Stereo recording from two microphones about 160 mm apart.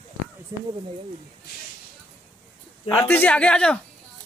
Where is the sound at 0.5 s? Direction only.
20° right (ahead or behind).